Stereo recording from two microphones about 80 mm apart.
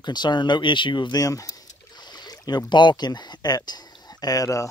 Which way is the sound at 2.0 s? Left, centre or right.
Left.